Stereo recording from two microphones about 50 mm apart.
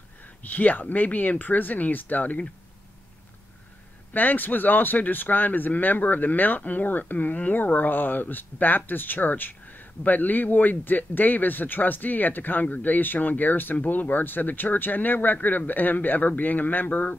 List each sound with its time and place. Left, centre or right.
0.4 s speech: left
4.1 s speech: left